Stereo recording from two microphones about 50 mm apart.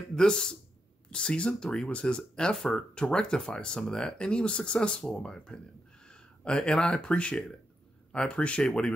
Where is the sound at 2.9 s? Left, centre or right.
Centre.